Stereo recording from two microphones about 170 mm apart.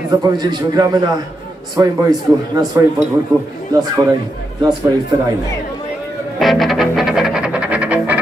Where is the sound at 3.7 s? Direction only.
20° right (ahead or behind).